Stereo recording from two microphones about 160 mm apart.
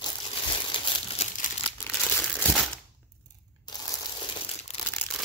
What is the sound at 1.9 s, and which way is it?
Crumpling, 10° left (ahead or behind).